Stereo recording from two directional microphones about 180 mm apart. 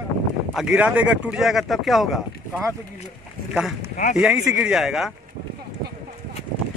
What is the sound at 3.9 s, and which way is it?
Speech, 45° left (ahead or behind).